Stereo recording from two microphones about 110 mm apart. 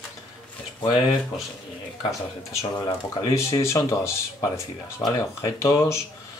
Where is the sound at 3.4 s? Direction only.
25° left (ahead or behind).